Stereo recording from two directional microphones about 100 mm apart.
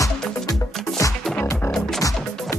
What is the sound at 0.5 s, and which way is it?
Music, 35° left (ahead or behind).